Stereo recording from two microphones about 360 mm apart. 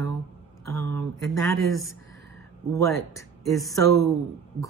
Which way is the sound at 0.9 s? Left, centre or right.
Centre.